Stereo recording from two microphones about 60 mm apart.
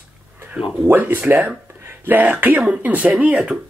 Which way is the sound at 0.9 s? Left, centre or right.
Right.